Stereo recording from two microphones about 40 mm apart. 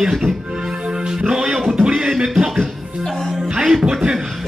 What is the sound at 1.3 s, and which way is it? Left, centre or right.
Music, centre.